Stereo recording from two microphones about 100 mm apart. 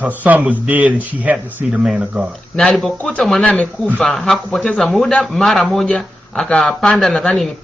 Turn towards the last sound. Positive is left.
turn(degrees=10)  # may be behind; listen again after turning